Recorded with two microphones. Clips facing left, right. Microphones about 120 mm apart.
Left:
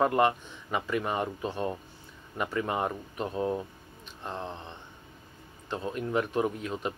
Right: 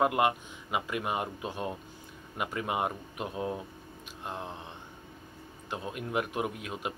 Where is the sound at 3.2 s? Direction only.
35° left (ahead or behind).